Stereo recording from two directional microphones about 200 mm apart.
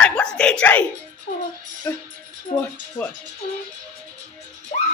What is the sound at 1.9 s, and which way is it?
Speech, 10° left (ahead or behind).